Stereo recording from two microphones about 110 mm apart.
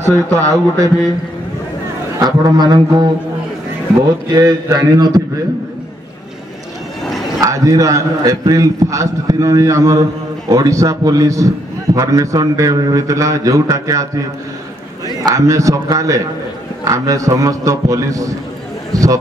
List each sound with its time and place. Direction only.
0.4 s a man's voice: 30° right (ahead or behind)
2.1 s a man's voice: 35° right (ahead or behind)
4.3 s a man's voice: 35° right (ahead or behind)
7.3 s a man's voice: 30° right (ahead or behind)
15.2 s a man's voice: 30° right (ahead or behind)